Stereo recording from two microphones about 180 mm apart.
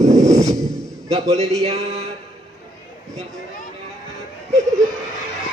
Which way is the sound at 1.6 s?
35° right (ahead or behind).